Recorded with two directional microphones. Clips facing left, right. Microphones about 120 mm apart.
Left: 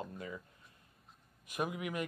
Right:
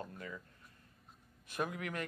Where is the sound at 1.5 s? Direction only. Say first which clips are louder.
Left 1 dB; 10° left (ahead or behind).